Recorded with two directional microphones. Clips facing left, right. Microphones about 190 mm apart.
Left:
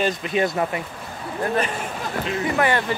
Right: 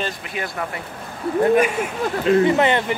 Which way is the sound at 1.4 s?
10° right (ahead or behind).